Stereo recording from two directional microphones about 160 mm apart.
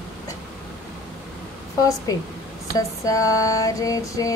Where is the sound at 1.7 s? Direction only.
20° left (ahead or behind).